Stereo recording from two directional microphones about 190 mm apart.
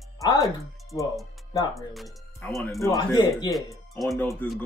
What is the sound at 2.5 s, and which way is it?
Speech, centre (ahead or behind).